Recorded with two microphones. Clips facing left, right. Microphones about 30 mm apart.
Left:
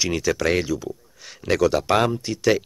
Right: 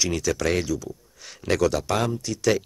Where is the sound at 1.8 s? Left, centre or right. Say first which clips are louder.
Left 5 dB; left.